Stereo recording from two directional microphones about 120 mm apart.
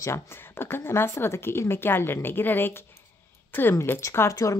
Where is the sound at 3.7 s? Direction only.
20° left (ahead or behind).